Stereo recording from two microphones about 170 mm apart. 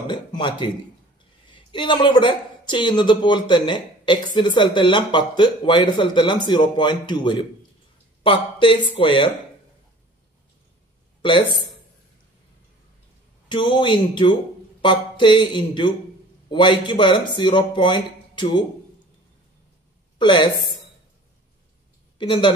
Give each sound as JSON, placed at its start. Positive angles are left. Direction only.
{"t": 0.0, "sound": "a woman's voice", "side_deg": 25}
{"t": 13.5, "sound": "speech", "side_deg": 30}
{"t": 20.2, "sound": "a woman's voice", "side_deg": 25}
{"t": 22.2, "sound": "speech", "side_deg": 30}